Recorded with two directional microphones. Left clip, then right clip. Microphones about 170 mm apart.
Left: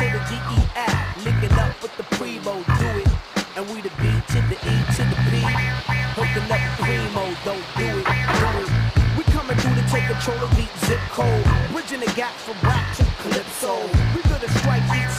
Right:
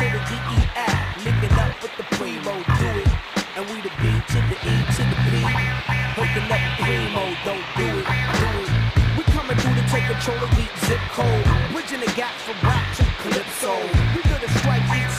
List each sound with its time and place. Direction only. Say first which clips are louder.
0.0 s music: even; centre (ahead or behind)
4.6 s music: even; centre (ahead or behind)